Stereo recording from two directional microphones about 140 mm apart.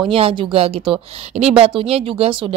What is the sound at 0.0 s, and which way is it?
A woman's voice, 40° right (ahead or behind).